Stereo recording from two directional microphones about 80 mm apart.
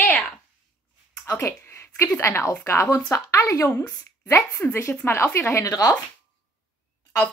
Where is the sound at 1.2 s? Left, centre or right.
Left.